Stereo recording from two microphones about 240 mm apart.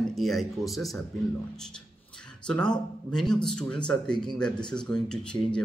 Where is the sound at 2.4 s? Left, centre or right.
Centre.